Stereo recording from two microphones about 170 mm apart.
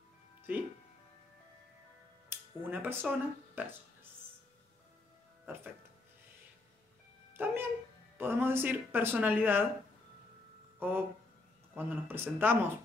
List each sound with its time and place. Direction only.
2.2 s speech: 10° right (ahead or behind)
5.4 s music: 15° right (ahead or behind)
7.4 s a sound: 10° right (ahead or behind)
8.2 s speech: 15° right (ahead or behind)
10.8 s speech: 10° right (ahead or behind)